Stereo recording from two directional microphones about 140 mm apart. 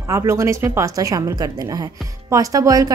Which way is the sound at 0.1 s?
20° right (ahead or behind).